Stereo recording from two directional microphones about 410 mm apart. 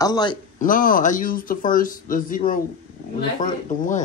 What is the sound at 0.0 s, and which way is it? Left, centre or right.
Speech, centre.